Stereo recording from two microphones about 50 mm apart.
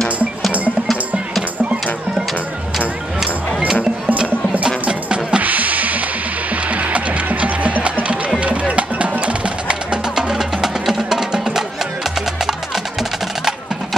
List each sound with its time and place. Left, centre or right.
3.2 s music: centre
4.8 s music: right
5.4 s music: right; by 12.5 s centre